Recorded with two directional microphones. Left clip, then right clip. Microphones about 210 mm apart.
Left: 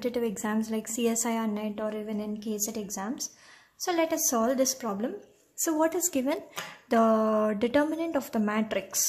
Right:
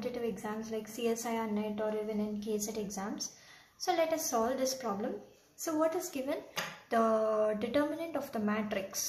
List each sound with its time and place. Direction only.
0.0 s a woman's voice: 50° left (ahead or behind)